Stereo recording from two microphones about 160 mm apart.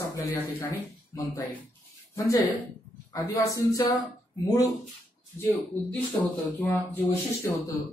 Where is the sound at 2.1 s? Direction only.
20° left (ahead or behind).